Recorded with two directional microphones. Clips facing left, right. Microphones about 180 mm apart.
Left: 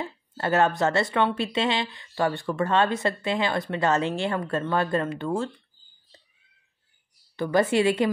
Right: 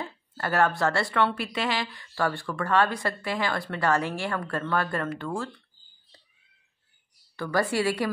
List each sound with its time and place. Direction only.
0.0 s speech: 20° left (ahead or behind)
7.3 s speech: 20° left (ahead or behind)